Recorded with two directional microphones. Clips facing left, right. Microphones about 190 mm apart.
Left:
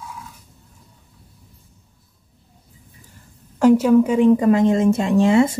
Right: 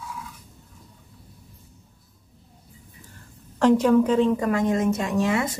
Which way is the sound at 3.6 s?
10° left (ahead or behind).